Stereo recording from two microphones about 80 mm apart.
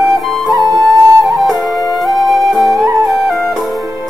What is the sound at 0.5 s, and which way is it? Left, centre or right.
Flute, right.